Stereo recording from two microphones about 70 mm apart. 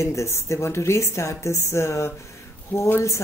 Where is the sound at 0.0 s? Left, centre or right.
Left.